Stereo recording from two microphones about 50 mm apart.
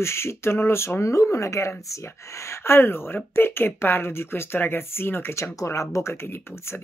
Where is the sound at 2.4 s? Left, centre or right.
Left.